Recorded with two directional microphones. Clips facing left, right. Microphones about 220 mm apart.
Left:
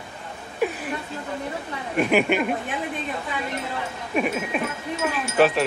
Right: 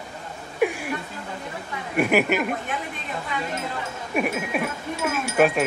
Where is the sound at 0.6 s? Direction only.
10° right (ahead or behind).